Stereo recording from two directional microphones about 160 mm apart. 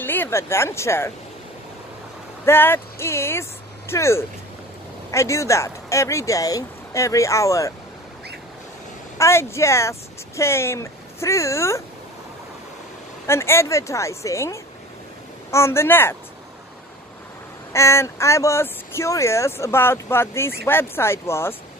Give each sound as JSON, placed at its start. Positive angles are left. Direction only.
{"t": 0.0, "sound": "speech", "side_deg": 15}
{"t": 2.4, "sound": "speech", "side_deg": 15}
{"t": 9.2, "sound": "speech", "side_deg": 15}
{"t": 13.3, "sound": "speech", "side_deg": 15}
{"t": 17.7, "sound": "speech", "side_deg": 20}